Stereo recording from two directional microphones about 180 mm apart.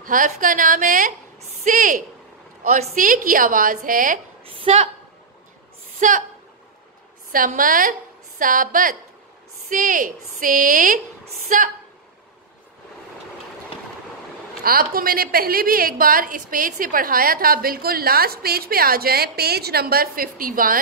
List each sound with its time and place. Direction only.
0.0 s a woman's voice: 50° right (ahead or behind)
4.7 s a woman's voice: 30° right (ahead or behind)
5.9 s a woman's voice: 45° right (ahead or behind)
7.3 s a woman's voice: 50° right (ahead or behind)
14.6 s a woman's voice: 55° right (ahead or behind)